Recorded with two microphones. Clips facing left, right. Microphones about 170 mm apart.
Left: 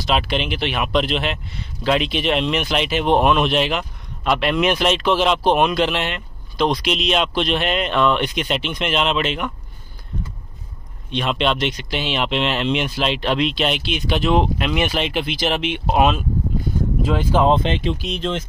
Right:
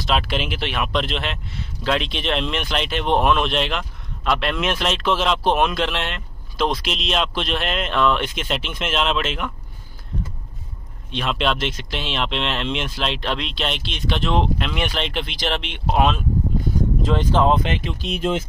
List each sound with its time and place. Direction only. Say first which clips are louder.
0.0 s speech: left 2 dB; centre (ahead or behind)
11.1 s speech: left 2 dB; centre (ahead or behind)
17.5 s speech: left 2 dB; 25° left (ahead or behind)
18.0 s speech: right 1 dB; 5° right (ahead or behind)